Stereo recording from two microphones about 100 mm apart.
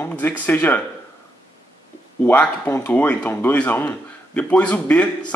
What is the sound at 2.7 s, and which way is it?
A man's voice, 20° left (ahead or behind).